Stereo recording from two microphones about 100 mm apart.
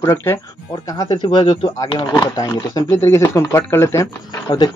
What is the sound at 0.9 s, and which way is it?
Speech, 45° left (ahead or behind).